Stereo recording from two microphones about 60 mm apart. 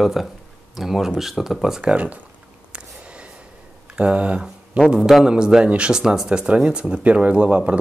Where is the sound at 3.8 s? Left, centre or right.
Centre.